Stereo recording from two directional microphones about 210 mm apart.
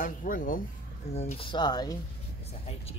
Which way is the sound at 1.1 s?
30° left (ahead or behind).